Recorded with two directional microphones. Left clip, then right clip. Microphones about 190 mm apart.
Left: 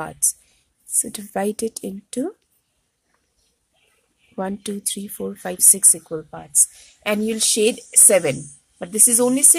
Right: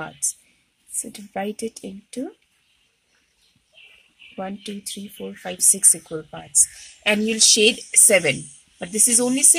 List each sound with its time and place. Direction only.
1.0 s speech: 40° left (ahead or behind)
4.4 s speech: 35° left (ahead or behind)
5.4 s speech: 25° left (ahead or behind)
6.0 s a woman's voice: 5° left (ahead or behind)